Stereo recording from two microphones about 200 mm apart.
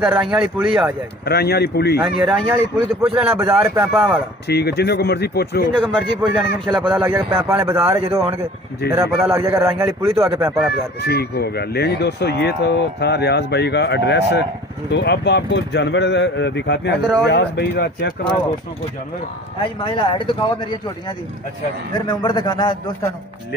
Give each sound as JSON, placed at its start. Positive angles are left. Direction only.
{"t": 0.0, "sound": "speech", "side_deg": -5}
{"t": 1.2, "sound": "speech", "side_deg": 55}
{"t": 2.3, "sound": "a man's voice", "side_deg": -10}
{"t": 3.9, "sound": "speech", "side_deg": 0}
{"t": 4.5, "sound": "speech", "side_deg": 55}
{"t": 5.9, "sound": "a man's voice", "side_deg": -5}
{"t": 11.0, "sound": "speech", "side_deg": 55}
{"t": 19.6, "sound": "speech", "side_deg": 25}
{"t": 21.9, "sound": "speech", "side_deg": 20}